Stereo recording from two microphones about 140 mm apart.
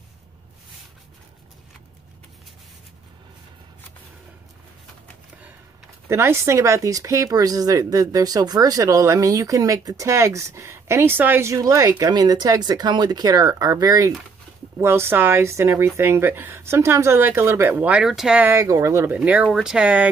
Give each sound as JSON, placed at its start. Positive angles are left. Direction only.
{"t": 6.0, "sound": "speech", "side_deg": -20}
{"t": 18.5, "sound": "speech", "side_deg": -25}
{"t": 19.1, "sound": "speech", "side_deg": -10}